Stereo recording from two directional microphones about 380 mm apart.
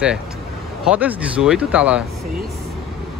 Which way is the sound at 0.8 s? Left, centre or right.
Centre.